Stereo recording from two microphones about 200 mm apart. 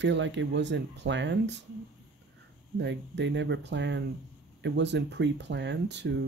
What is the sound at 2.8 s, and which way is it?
Speech, 60° right (ahead or behind).